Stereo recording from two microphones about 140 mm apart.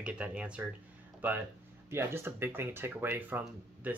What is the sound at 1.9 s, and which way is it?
Speech, 15° right (ahead or behind).